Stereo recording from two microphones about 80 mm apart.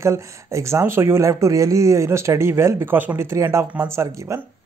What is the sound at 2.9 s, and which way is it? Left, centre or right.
Speech, right.